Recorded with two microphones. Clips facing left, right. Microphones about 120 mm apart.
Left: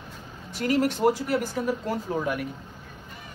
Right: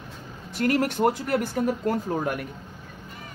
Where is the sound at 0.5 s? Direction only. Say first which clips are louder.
Right 1 dB; 55° right (ahead or behind).